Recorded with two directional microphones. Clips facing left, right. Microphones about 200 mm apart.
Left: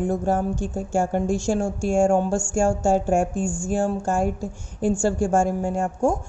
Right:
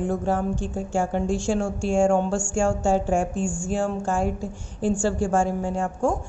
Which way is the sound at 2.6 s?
40° left (ahead or behind).